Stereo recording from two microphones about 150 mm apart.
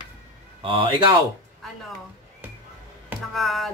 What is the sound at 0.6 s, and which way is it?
Speech, 35° right (ahead or behind).